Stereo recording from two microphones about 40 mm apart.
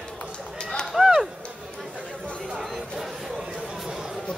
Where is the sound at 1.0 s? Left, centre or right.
Centre.